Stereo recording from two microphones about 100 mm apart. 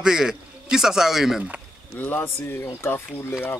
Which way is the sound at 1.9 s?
20° left (ahead or behind).